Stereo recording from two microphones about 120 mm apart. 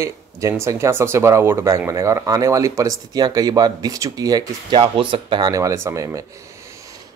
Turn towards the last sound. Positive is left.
turn(degrees=-25)  # may be behind; listen again after turning